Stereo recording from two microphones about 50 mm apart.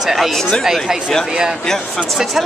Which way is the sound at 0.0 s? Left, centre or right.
Centre.